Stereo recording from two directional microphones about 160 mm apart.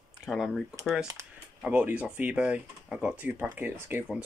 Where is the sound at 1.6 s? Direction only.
10° right (ahead or behind).